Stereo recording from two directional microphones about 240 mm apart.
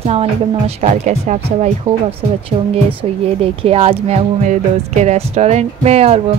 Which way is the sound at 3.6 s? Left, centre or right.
Right.